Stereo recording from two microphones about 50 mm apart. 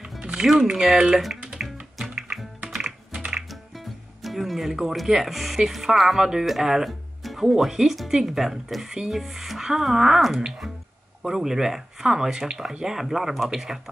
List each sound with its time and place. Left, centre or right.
0.2 s music: centre
0.7 s speech: centre
1.6 s music: centre
3.3 s music: centre
5.7 s speech: centre